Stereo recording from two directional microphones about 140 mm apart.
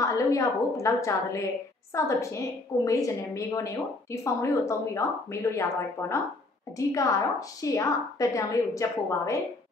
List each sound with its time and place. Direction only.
0.0 s a woman's voice: 25° left (ahead or behind)